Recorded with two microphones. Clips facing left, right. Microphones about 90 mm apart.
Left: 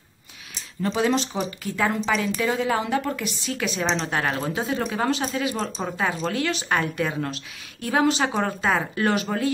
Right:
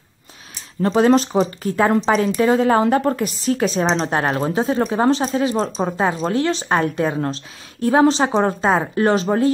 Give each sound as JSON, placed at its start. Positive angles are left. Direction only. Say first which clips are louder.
{"t": 0.8, "sound": "speech", "louder": "right 8 dB", "side_deg": -45}